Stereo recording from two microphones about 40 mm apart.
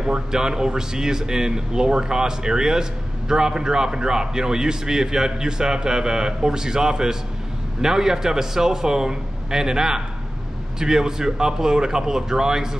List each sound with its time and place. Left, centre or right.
0.0 s speech: centre